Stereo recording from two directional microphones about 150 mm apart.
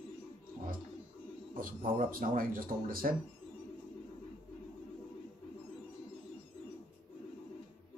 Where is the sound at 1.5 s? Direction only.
70° right (ahead or behind).